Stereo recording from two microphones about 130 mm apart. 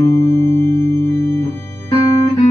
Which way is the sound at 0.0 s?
20° left (ahead or behind).